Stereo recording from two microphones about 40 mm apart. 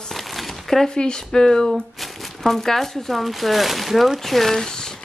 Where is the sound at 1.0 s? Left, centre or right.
Centre.